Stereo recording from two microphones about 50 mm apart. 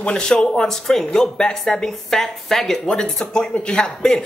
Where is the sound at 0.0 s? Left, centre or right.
Centre.